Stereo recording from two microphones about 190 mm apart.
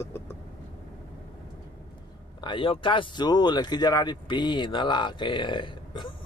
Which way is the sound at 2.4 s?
25° left (ahead or behind).